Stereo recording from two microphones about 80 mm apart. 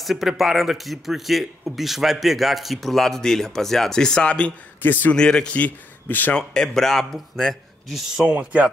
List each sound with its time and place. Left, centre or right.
0.0 s a man's voice: centre; by 5.1 s left
5.1 s speech: centre
6.3 s speech: centre
8.3 s speech: centre